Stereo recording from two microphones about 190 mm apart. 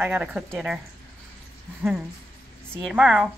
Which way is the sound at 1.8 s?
5° right (ahead or behind).